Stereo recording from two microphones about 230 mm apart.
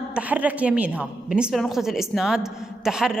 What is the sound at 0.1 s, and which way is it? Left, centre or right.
A woman's voice, centre.